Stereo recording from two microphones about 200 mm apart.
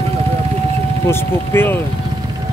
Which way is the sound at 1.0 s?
10° left (ahead or behind).